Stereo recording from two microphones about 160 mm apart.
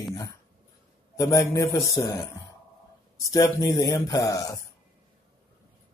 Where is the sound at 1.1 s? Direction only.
20° left (ahead or behind).